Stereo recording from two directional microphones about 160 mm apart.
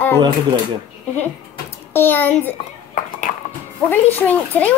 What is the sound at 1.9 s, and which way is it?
Speech, 15° left (ahead or behind).